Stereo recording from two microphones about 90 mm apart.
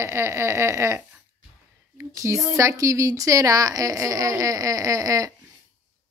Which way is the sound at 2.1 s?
35° right (ahead or behind).